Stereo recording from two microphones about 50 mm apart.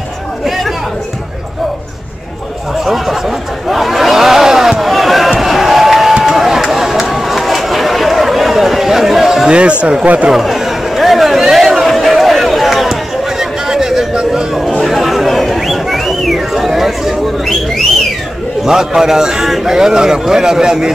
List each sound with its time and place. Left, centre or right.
2.8 s chatter: centre
3.6 s a sound: centre
5.3 s slam: centre
6.2 s chatter: centre
9.6 s a sound: right
10.0 s speech: right
10.3 s chatter: centre
13.4 s a sound: centre
18.6 s a man's voice: centre